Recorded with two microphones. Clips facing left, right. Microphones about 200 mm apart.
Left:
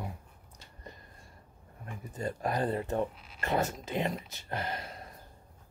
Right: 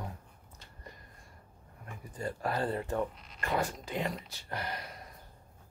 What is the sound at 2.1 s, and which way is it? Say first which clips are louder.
Speech: left 2 dB; 20° left (ahead or behind).